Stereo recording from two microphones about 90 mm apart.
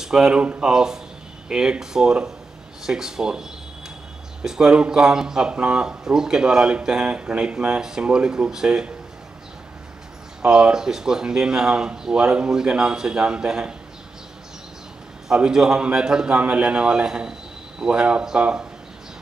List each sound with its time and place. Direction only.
0.0 s speech: 5° right (ahead or behind)
10.4 s speech: 10° right (ahead or behind)
15.2 s speech: 5° right (ahead or behind)